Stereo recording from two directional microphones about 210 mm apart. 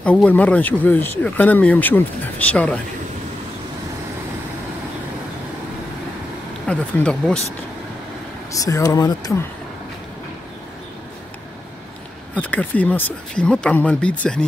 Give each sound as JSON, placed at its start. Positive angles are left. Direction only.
{"t": 0.0, "sound": "speech", "side_deg": 5}
{"t": 6.7, "sound": "speech", "side_deg": 5}
{"t": 8.5, "sound": "speech", "side_deg": 15}
{"t": 12.4, "sound": "speech", "side_deg": 5}